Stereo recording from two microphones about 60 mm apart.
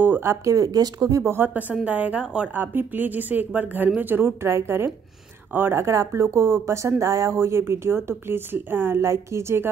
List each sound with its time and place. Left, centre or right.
0.0 s speech: right
0.5 s speech: right
1.2 s a woman's voice: right; by 2.5 s centre
2.5 s speech: right
5.9 s a woman's voice: right
7.0 s speech: right
7.3 s a woman's voice: right
9.1 s a woman's voice: right